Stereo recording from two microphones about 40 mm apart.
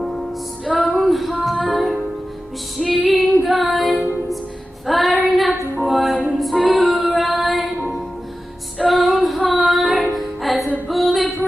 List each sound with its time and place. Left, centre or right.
0.7 s music: centre
2.8 s female singing: centre
5.8 s music: centre
6.4 s female singing: centre
8.7 s music: centre
10.9 s a sound: centre